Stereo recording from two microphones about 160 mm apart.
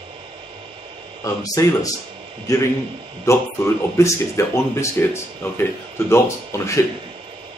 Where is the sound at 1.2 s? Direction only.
20° left (ahead or behind).